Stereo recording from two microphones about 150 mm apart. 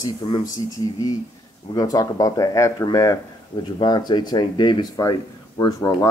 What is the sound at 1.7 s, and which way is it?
Speech, 25° left (ahead or behind).